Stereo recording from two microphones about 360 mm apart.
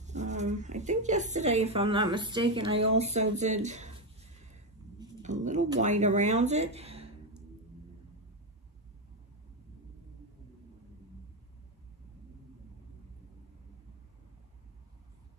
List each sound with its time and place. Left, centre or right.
0.0 s speech: centre
4.9 s speech: centre